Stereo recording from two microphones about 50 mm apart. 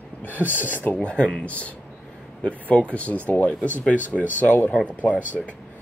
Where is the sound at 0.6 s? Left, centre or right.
Left.